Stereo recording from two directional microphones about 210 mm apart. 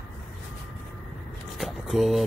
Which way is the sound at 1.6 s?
Centre (ahead or behind).